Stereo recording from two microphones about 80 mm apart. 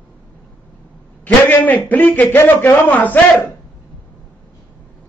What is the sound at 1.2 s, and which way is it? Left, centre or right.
A man's voice, left.